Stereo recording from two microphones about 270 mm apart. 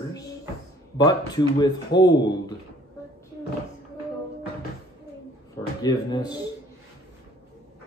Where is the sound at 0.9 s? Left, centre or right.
Centre.